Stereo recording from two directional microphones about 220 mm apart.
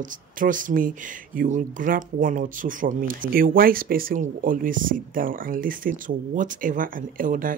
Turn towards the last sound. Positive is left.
turn(degrees=-35)  # may be behind; listen again after turning